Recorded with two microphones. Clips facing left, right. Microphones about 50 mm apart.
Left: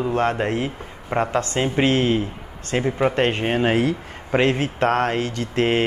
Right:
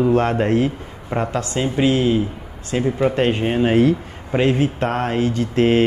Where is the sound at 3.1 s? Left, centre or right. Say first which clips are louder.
Right 2 dB; left.